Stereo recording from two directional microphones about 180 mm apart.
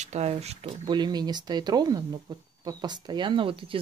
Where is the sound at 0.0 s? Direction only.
40° right (ahead or behind).